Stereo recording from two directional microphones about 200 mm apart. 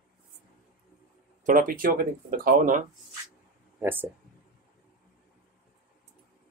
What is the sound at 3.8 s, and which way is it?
Speech, 10° right (ahead or behind).